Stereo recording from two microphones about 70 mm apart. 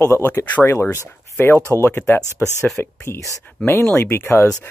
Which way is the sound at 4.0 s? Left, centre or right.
Left.